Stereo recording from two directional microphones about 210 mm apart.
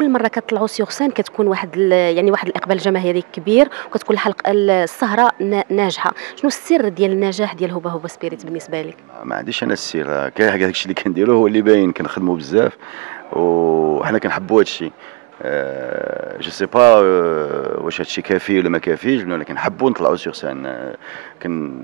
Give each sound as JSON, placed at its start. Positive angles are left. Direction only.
{"t": 0.0, "sound": "speech", "side_deg": -15}
{"t": 9.5, "sound": "speech", "side_deg": -10}
{"t": 13.3, "sound": "a sound", "side_deg": -25}
{"t": 14.0, "sound": "speech", "side_deg": -15}
{"t": 17.9, "sound": "speech", "side_deg": -10}